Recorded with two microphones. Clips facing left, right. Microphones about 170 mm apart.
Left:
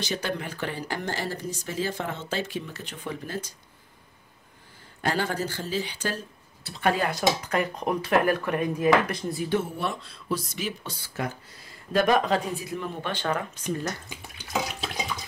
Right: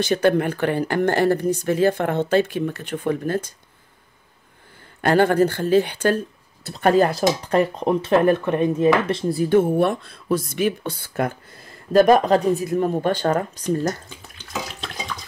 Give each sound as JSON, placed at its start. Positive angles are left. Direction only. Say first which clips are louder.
{"t": 0.0, "sound": "speech", "louder": "right 12 dB", "side_deg": -55}
{"t": 5.0, "sound": "speech", "louder": "right 11 dB", "side_deg": -60}
{"t": 9.4, "sound": "speech", "louder": "right 11 dB", "side_deg": -50}
{"t": 14.0, "sound": "water", "louder": "even", "side_deg": 10}